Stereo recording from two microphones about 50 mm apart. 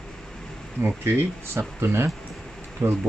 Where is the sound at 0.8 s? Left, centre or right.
Right.